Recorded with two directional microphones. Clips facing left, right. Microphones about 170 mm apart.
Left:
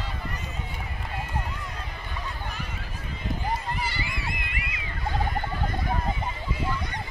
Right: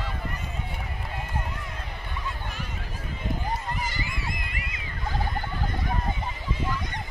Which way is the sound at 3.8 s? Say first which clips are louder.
Left 1 dB; 45° right (ahead or behind).